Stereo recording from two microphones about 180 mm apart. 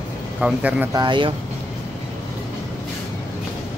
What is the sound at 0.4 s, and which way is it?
Speech, 10° right (ahead or behind).